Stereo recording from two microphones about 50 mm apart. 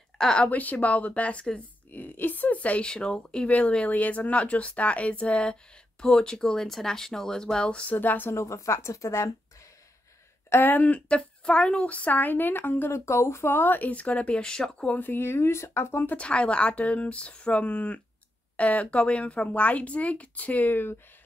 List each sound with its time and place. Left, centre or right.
0.4 s speech: left
1.9 s a woman's voice: left
2.9 s speech: centre
7.9 s speech: left
8.4 s speech: left
10.5 s speech: left
10.9 s speech: centre; by 12.9 s left
12.9 s speech: left
14.4 s speech: centre
15.0 s speech: left
16.2 s speech: left